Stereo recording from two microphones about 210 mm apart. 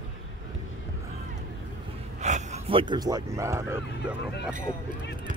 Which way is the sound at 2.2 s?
35° right (ahead or behind).